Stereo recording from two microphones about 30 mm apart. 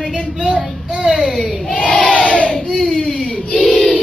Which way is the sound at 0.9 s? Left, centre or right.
Right.